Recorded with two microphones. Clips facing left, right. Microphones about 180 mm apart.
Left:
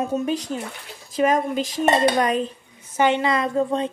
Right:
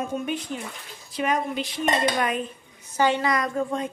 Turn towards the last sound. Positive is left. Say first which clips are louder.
# left 5 dB
turn(degrees=30)  # may be behind; listen again after turning